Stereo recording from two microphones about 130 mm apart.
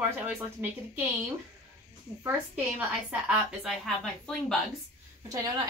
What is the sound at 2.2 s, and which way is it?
Speech, 15° right (ahead or behind).